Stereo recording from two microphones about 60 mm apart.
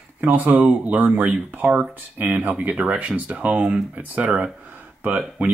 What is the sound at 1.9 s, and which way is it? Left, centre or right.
Speech, right.